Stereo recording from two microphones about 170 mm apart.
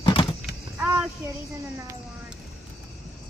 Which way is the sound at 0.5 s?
5° right (ahead or behind).